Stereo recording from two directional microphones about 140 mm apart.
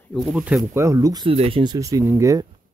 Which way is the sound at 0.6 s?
20° right (ahead or behind).